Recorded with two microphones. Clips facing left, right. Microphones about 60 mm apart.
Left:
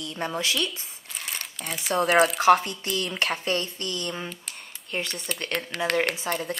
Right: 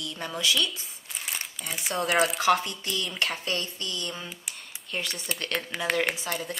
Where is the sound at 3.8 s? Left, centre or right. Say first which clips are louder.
Left 3 dB; left.